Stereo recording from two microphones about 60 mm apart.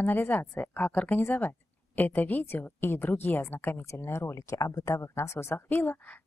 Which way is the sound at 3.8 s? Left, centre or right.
Left.